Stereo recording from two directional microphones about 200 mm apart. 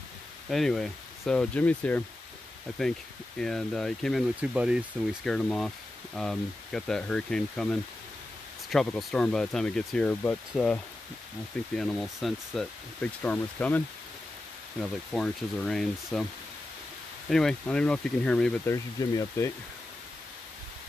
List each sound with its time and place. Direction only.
0.5 s speech: centre (ahead or behind)
3.3 s speech: 5° left (ahead or behind)
15.1 s speech: centre (ahead or behind)
17.3 s speech: 5° left (ahead or behind)